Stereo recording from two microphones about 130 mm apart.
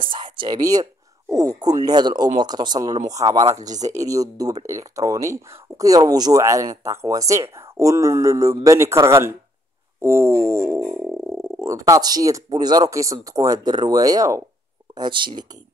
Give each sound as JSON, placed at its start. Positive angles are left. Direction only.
{"t": 0.0, "sound": "a sound", "side_deg": -40}
{"t": 1.3, "sound": "speech", "side_deg": -25}
{"t": 15.0, "sound": "speech", "side_deg": -35}